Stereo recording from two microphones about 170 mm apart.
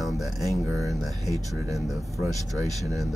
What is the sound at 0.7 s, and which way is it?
Speech, centre (ahead or behind).